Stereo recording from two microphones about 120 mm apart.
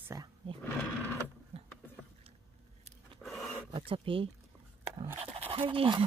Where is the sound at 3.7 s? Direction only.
45° right (ahead or behind).